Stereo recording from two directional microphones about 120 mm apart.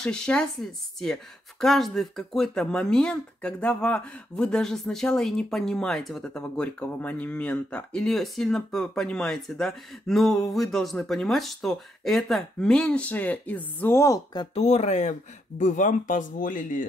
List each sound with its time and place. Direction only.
0.0 s speech: 5° left (ahead or behind); by 14.5 s 35° left (ahead or behind)
14.5 s speech: 65° left (ahead or behind)
15.6 s speech: 90° left